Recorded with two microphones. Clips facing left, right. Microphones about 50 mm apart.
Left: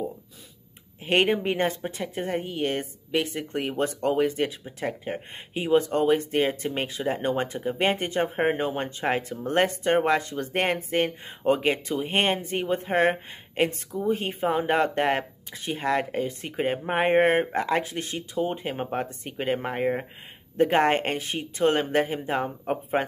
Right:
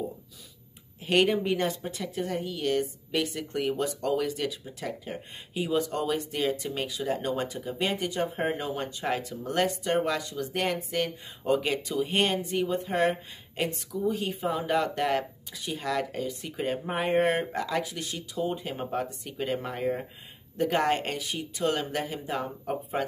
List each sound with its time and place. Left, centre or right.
1.0 s speech: left